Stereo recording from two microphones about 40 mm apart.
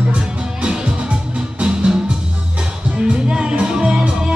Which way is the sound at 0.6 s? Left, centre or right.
Right.